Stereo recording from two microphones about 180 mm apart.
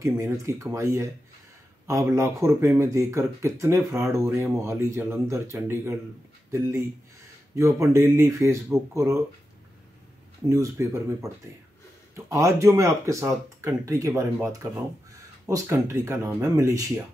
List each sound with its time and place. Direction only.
0.0 s speech: 15° right (ahead or behind)
7.5 s speech: 15° right (ahead or behind)
10.4 s speech: 15° right (ahead or behind)